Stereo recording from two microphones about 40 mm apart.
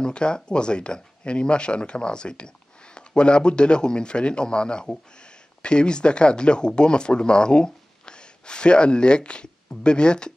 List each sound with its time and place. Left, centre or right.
0.0 s speech: left